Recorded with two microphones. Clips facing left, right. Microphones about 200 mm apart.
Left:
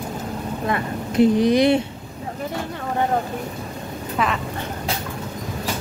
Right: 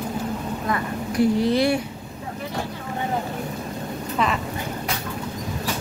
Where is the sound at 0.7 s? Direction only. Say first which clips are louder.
Left 3 dB; 25° left (ahead or behind).